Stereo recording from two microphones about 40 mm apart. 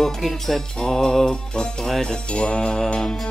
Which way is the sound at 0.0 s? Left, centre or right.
Centre.